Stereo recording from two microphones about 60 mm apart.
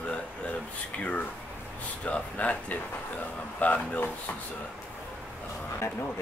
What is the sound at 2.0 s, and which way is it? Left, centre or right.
Speech, left.